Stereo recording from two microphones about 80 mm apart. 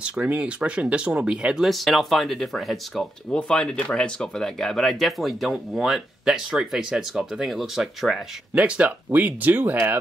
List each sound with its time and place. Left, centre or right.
0.0 s speech: centre
3.3 s speech: centre
8.5 s speech: centre